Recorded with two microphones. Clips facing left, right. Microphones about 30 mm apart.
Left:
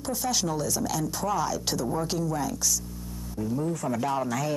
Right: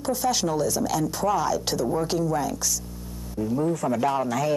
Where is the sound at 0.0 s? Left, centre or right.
Right.